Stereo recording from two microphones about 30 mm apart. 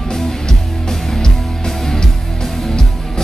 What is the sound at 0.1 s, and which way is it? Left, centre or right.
Music, centre.